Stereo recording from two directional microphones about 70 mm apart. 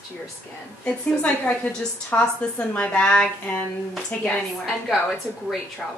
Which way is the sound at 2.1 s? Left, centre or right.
Left.